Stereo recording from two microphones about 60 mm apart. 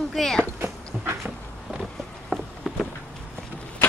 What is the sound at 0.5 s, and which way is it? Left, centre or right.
Dog, right.